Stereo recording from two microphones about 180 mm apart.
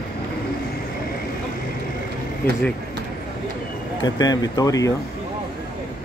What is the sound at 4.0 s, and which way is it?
Speech, 20° left (ahead or behind).